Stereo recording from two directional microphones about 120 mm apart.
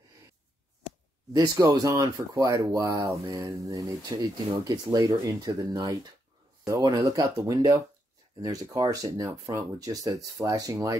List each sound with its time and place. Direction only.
1.3 s speech: 30° right (ahead or behind)